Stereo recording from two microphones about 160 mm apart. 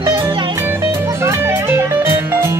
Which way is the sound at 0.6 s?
15° right (ahead or behind).